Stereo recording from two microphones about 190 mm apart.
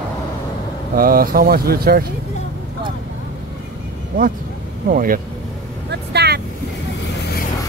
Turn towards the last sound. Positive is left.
turn(degrees=-60)  # may be behind; listen again after turning